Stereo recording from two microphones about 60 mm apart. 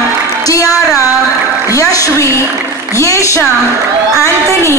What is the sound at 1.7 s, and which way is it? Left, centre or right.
A woman's voice, left.